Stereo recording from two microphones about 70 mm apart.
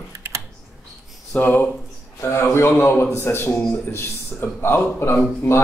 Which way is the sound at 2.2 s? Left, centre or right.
Left.